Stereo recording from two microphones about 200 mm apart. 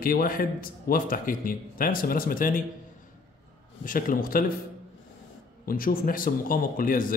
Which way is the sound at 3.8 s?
45° left (ahead or behind).